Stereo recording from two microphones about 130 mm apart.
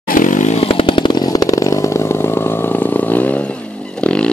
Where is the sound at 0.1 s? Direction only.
85° left; by 0.7 s 65° left (ahead or behind).